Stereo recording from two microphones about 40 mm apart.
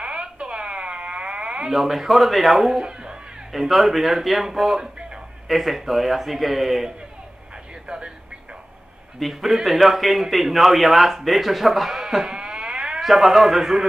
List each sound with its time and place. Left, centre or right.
0.0 s a sound: right
1.7 s a man's voice: centre
2.8 s a sound: right
3.5 s a man's voice: centre
9.2 s a man's voice: centre
13.0 s a man's voice: centre